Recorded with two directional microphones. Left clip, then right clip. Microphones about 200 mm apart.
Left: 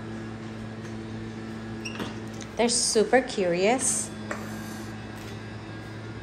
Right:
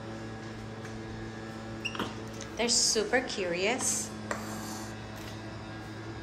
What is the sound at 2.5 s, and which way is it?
A woman's voice, 15° right (ahead or behind).